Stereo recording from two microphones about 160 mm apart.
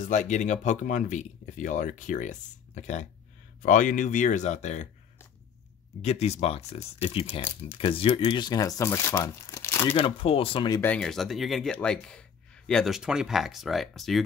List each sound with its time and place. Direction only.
0.0 s speech: 50° left (ahead or behind)
6.0 s speech: 45° left (ahead or behind); by 9.8 s 15° left (ahead or behind)
9.8 s speech: 35° left (ahead or behind)
10.8 s speech: 5° left (ahead or behind)